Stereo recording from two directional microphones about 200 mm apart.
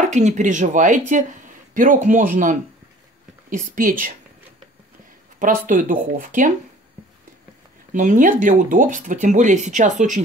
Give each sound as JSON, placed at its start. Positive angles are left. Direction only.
{"t": 0.0, "sound": "speech", "side_deg": -40}
{"t": 5.7, "sound": "speech", "side_deg": -45}
{"t": 7.9, "sound": "speech", "side_deg": -40}